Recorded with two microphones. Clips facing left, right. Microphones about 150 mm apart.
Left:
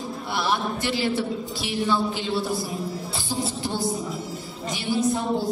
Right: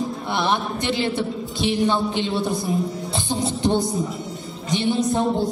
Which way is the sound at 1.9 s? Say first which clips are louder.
Right 3 dB; 20° right (ahead or behind).